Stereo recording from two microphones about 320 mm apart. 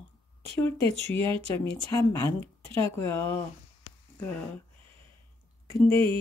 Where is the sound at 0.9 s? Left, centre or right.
Centre.